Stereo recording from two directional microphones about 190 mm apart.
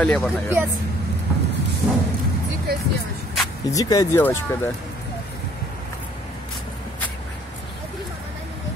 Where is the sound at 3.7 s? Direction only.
20° left (ahead or behind).